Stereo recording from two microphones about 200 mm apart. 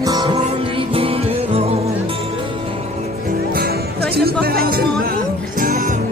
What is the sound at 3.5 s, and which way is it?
Music, 50° right (ahead or behind).